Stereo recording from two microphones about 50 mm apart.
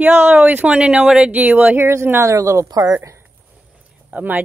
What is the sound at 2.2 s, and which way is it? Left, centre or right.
Speech, right.